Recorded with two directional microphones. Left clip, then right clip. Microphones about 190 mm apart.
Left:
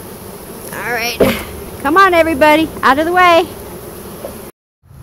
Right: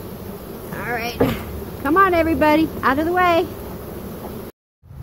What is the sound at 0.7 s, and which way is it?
Speech, 35° left (ahead or behind).